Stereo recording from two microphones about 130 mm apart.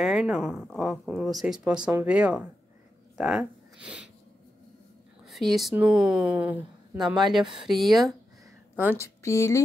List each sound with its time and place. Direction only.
0.0 s speech: 5° right (ahead or behind)
5.2 s a woman's voice: centre (ahead or behind)
7.5 s speech: centre (ahead or behind)
8.7 s a woman's voice: 15° right (ahead or behind)
9.0 s a woman's voice: 20° left (ahead or behind)